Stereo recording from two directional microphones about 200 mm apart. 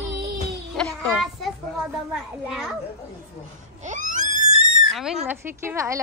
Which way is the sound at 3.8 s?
40° right (ahead or behind).